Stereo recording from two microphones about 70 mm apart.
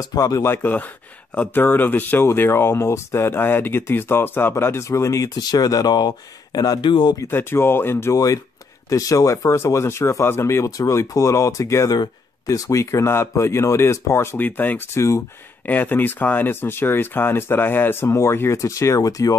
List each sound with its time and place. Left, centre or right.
0.0 s speech: left
0.4 s speech: left
5.3 s speech: left
7.2 s speech: left
8.1 s speech: left
14.3 s speech: left
15.0 s speech: left
15.6 s speech: left